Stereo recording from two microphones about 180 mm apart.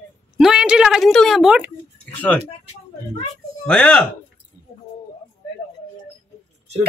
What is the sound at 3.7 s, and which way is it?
Speech, 5° left (ahead or behind).